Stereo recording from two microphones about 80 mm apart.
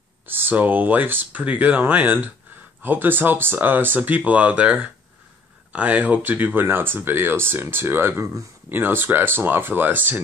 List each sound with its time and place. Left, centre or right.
0.3 s speech: right